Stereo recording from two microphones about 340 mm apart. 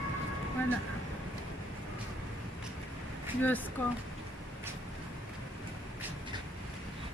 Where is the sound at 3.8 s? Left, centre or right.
Centre.